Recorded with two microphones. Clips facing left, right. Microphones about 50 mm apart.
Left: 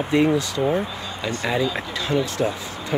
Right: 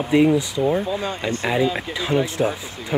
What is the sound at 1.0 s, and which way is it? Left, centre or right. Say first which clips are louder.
Speech: right 4 dB; right.